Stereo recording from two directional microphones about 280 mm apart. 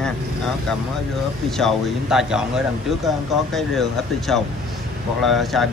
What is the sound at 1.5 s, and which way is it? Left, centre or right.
Speech, centre.